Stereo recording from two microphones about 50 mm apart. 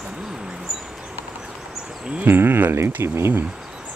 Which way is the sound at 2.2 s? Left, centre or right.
Right.